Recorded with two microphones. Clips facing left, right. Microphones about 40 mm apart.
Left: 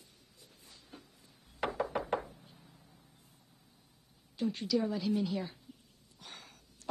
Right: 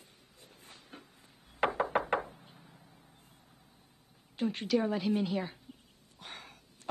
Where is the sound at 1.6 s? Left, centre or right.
Right.